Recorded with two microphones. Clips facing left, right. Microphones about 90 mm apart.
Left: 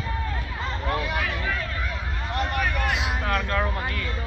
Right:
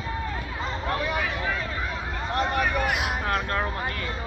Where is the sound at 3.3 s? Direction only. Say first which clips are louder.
Left 3 dB; 30° right (ahead or behind).